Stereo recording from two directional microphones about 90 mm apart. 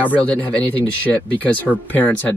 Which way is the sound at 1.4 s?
20° left (ahead or behind).